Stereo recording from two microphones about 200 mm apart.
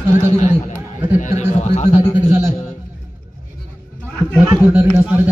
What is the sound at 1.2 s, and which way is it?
Speech, 35° left (ahead or behind).